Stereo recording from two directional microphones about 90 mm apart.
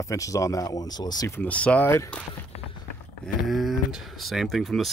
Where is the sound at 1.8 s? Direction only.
30° left (ahead or behind).